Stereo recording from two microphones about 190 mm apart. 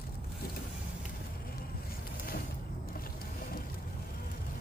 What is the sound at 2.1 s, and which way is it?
Vehicle, 50° left (ahead or behind).